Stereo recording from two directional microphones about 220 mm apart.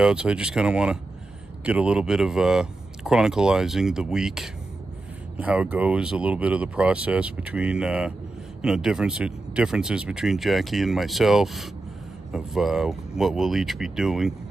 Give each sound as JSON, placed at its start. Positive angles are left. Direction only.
{"t": 0.0, "sound": "speech", "side_deg": -5}